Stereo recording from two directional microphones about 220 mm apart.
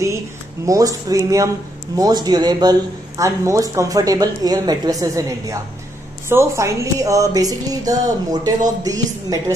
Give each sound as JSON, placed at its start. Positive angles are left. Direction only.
{"t": 0.7, "sound": "a man's voice", "side_deg": -15}